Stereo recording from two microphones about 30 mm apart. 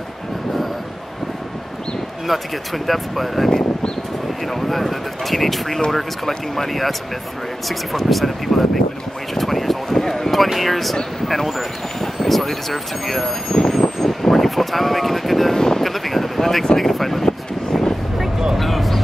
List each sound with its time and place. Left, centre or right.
2.2 s speech: centre
4.5 s speech: centre
9.3 s a sound: centre
10.3 s speech: centre
13.5 s vehicle: left
13.7 s vehicle: centre
15.5 s wind noise: centre
15.8 s a sound: centre
16.7 s speech: centre
18.6 s speech: centre